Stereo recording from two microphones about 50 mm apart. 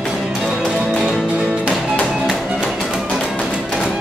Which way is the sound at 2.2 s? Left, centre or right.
Centre.